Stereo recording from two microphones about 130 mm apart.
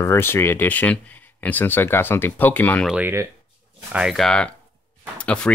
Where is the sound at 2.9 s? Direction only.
15° right (ahead or behind).